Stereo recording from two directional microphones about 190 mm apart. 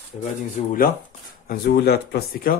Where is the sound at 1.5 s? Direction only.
55° left (ahead or behind).